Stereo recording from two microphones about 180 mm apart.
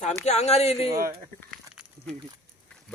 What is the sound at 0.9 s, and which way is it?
Speech, 55° right (ahead or behind).